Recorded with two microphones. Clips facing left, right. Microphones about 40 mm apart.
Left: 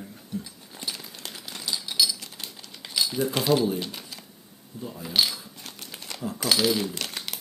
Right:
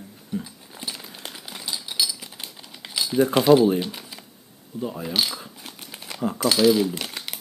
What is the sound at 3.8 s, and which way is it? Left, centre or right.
Typing, centre.